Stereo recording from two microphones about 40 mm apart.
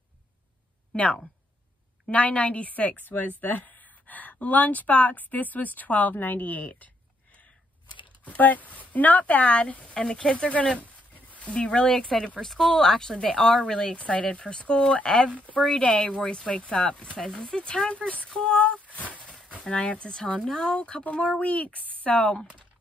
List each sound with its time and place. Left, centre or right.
0.9 s a woman's voice: left
3.1 s speech: left
6.4 s a woman's voice: left
8.3 s a woman's voice: left
11.1 s a sound: left
11.5 s speech: left
11.9 s speech: centre
13.9 s speech: left
18.7 s a sound: left
19.5 s a woman's voice: left